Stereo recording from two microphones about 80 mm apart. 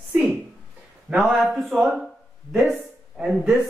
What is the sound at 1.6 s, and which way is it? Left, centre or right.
Speech, centre.